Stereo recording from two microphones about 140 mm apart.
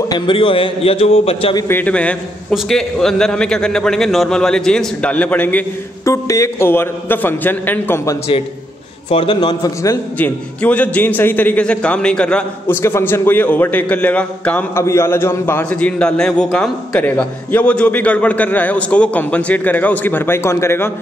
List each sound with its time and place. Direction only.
0.1 s a man's voice: 35° left (ahead or behind)
1.7 s a man's voice: 10° left (ahead or behind)
6.0 s a man's voice: 20° left (ahead or behind)
9.1 s a man's voice: 35° left (ahead or behind)
10.1 s a man's voice: 10° left (ahead or behind)